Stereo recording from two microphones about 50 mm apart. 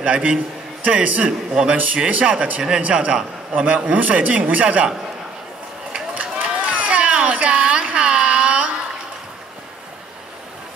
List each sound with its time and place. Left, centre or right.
0.0 s a man's voice: right
1.5 s a man's voice: centre
2.0 s a man's voice: right
6.1 s a sound: right